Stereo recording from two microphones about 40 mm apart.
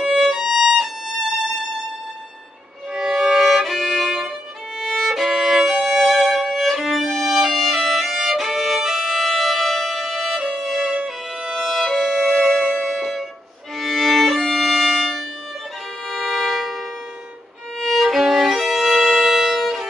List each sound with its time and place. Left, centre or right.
0.0 s violin: centre
2.9 s violin: centre
5.8 s violin: centre
10.6 s music: centre
13.7 s violin: centre
16.1 s music: centre
17.7 s violin: centre